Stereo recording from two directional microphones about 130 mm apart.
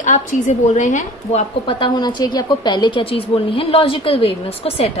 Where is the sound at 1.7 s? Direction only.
35° left (ahead or behind).